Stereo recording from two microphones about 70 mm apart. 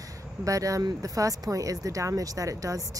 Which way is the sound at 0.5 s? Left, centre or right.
Right.